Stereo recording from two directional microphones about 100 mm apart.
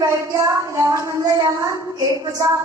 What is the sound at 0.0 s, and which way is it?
A woman's voice, 30° right (ahead or behind).